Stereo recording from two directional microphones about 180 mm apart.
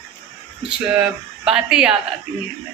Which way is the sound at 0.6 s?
5° right (ahead or behind).